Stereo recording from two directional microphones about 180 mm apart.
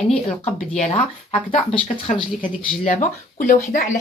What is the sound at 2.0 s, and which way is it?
Speech, 45° left (ahead or behind).